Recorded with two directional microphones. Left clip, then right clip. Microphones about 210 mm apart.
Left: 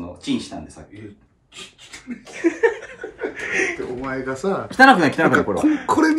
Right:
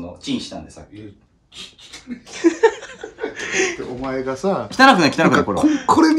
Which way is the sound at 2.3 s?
10° right (ahead or behind).